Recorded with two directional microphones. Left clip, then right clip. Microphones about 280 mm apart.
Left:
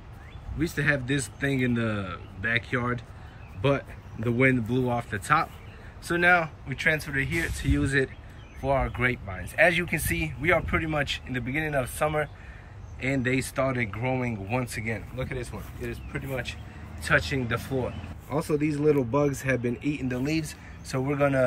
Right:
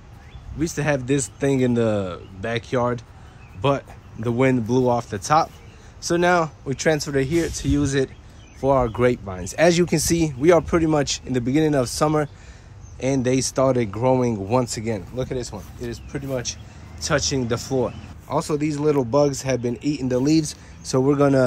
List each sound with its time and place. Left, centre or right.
0.6 s speech: centre
13.0 s speech: centre